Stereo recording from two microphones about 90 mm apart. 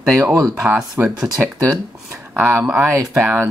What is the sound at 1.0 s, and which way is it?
Speech, 25° right (ahead or behind).